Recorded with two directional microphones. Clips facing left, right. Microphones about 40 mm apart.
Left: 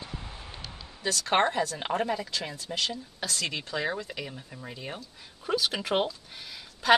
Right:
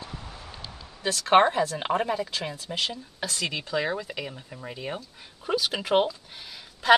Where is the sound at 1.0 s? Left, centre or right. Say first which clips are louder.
Right 6 dB; right.